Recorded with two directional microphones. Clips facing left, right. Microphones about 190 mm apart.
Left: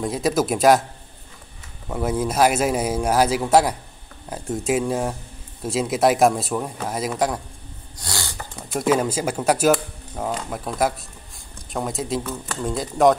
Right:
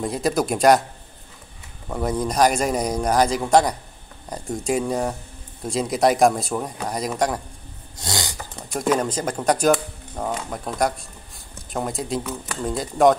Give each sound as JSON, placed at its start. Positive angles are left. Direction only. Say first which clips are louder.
{"t": 0.0, "sound": "speech", "louder": "left 1 dB", "side_deg": 0}
{"t": 1.9, "sound": "speech", "louder": "left 1 dB", "side_deg": 5}
{"t": 8.0, "sound": "a sound", "louder": "right 3 dB", "side_deg": -20}
{"t": 8.7, "sound": "speech", "louder": "left 1 dB", "side_deg": 5}